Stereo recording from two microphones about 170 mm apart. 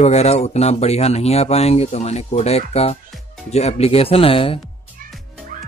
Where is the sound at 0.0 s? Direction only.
40° left (ahead or behind).